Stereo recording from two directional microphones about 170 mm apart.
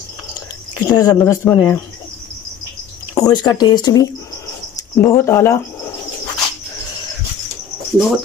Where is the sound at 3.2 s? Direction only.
25° left (ahead or behind).